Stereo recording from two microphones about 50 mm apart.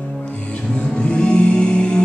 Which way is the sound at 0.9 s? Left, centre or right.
Left.